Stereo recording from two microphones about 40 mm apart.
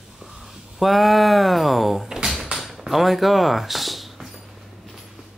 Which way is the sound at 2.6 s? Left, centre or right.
Centre.